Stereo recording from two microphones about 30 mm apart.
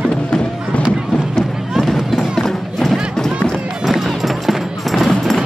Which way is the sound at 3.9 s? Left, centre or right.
Centre.